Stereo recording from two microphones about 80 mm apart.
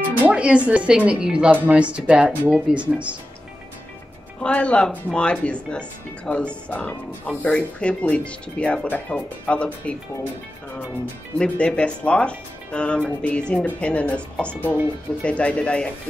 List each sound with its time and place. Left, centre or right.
0.2 s speech: centre
4.4 s speech: centre
11.3 s speech: centre